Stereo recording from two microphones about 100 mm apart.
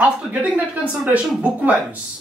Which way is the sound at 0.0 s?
15° right (ahead or behind).